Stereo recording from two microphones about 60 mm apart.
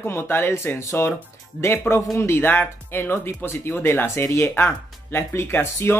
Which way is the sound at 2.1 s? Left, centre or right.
Left.